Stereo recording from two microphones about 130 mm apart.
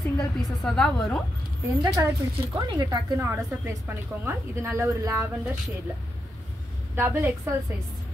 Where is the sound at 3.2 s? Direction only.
15° right (ahead or behind).